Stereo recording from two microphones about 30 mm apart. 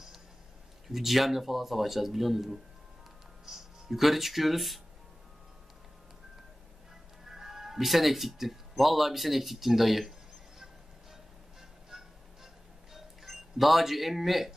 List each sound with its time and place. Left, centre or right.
0.8 s speech: centre
3.4 s speech: centre
7.2 s speech: centre
11.9 s music: centre
12.9 s music: centre